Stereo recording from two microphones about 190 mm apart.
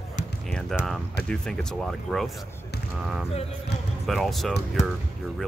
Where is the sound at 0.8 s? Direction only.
5° left (ahead or behind).